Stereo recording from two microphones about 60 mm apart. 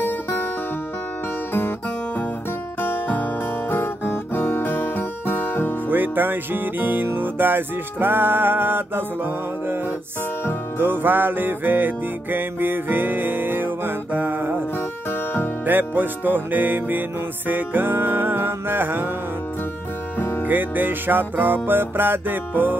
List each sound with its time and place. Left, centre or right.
0.0 s music: left
2.8 s guitar: left
5.9 s music: right
15.0 s music: left
15.6 s music: right
20.2 s music: left
20.4 s music: right